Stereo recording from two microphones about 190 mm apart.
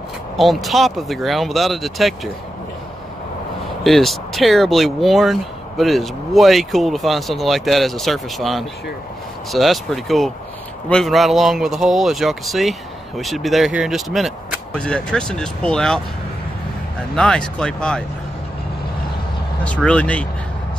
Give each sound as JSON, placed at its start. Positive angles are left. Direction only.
{"t": 0.4, "sound": "speech", "side_deg": 0}
{"t": 3.8, "sound": "speech", "side_deg": 0}
{"t": 17.1, "sound": "speech", "side_deg": 5}
{"t": 19.6, "sound": "speech", "side_deg": 5}